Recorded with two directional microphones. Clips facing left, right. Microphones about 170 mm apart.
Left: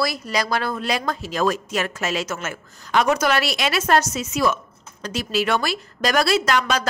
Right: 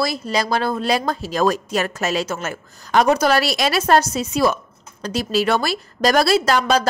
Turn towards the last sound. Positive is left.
turn(degrees=-35)  # may be behind; listen again after turning